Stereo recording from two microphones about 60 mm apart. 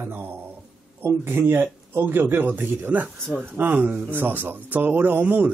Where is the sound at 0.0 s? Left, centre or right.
Right.